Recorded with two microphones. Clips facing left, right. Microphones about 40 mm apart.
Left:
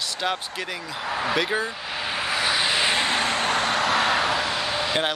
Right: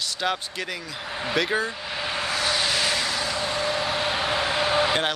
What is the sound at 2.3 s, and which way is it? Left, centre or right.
Vehicle, centre.